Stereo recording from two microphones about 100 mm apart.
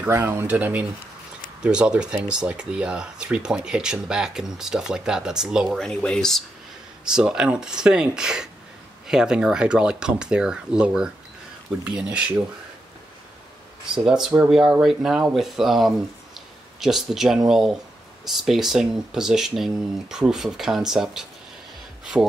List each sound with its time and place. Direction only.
0.1 s speech: 25° right (ahead or behind); by 5.8 s 5° right (ahead or behind)
5.8 s speech: 10° left (ahead or behind)
7.1 s speech: 10° right (ahead or behind)
13.9 s speech: 5° right (ahead or behind)